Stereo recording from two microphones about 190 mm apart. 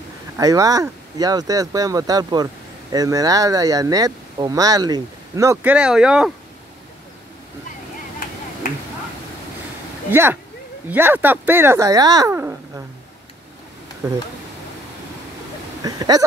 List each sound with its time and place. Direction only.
0.4 s speech: 20° right (ahead or behind)
10.9 s speech: 10° right (ahead or behind)
14.0 s speech: 20° right (ahead or behind)
15.8 s a sound: 20° right (ahead or behind)